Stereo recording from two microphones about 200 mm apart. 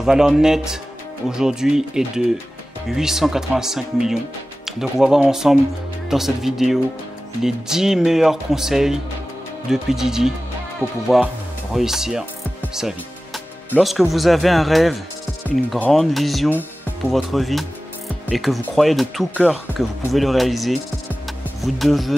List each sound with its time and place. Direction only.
0.0 s speech: 5° right (ahead or behind)
12.7 s music: centre (ahead or behind)
13.7 s speech: centre (ahead or behind)